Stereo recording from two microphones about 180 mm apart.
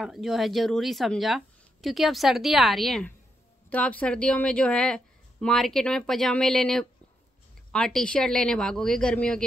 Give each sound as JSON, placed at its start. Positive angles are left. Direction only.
{"t": 0.0, "sound": "a woman's voice", "side_deg": 0}